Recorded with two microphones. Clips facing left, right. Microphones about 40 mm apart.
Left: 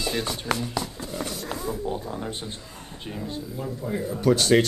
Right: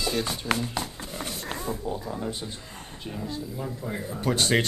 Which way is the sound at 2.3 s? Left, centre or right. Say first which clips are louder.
Left 1 dB; left.